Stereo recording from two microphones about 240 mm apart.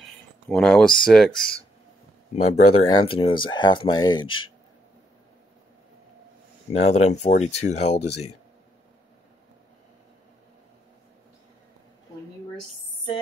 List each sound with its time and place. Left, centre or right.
0.5 s speech: centre
2.4 s speech: left
6.7 s speech: left